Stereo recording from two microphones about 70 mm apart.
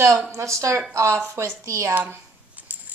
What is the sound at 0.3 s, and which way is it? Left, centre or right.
Speech, right.